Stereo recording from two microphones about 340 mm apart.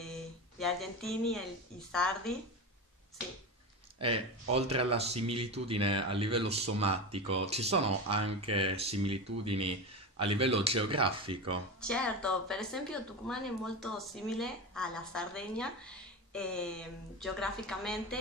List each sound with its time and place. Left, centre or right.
0.6 s speech: centre
4.0 s speech: centre
11.8 s speech: centre